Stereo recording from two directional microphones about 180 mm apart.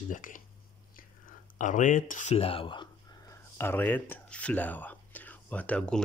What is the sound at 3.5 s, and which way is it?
Speech, 10° left (ahead or behind).